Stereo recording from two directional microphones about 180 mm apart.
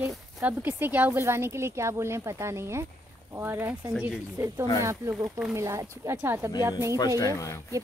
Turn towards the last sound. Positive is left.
turn(degrees=20)  # may be behind; listen again after turning